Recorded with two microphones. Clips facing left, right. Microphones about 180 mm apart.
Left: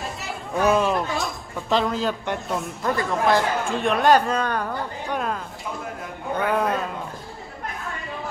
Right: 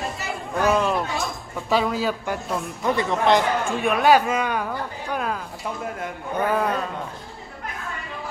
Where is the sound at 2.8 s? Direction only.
15° right (ahead or behind).